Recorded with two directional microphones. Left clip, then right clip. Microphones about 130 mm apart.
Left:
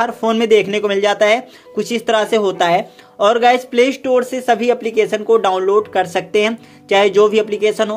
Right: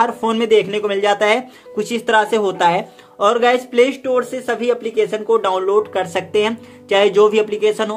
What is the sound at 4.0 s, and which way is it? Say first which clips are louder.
Speech: left 3 dB; 45° left (ahead or behind).